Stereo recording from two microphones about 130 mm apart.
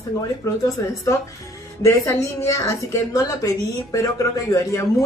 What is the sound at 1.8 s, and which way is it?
Speech, 20° left (ahead or behind).